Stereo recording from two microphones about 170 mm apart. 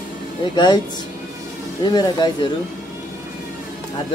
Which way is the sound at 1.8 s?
25° left (ahead or behind).